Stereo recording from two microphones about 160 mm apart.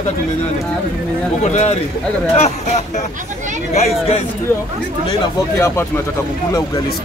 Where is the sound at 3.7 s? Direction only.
45° left (ahead or behind).